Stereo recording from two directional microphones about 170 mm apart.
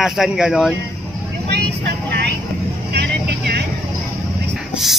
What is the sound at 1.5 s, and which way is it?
Vehicle, 75° right (ahead or behind).